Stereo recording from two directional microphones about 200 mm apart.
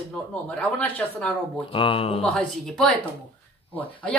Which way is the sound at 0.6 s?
5° left (ahead or behind).